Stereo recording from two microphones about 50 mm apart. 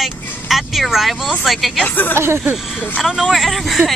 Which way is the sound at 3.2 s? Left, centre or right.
Centre.